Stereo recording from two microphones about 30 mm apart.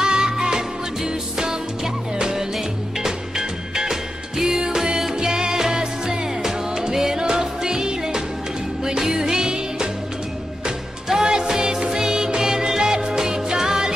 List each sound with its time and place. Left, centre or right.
0.0 s music: right
11.1 s music: centre